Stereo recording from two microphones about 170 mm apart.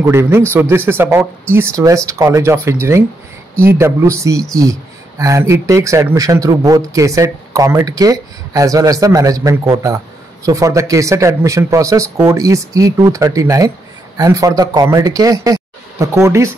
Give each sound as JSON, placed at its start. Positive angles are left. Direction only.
{"t": 0.0, "sound": "speech", "side_deg": -15}